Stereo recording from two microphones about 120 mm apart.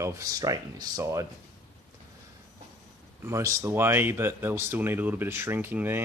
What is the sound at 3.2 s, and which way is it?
Speech, 25° right (ahead or behind).